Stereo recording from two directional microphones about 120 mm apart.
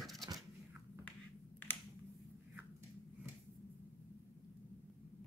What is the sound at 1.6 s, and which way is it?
Computer keyboard, 15° left (ahead or behind).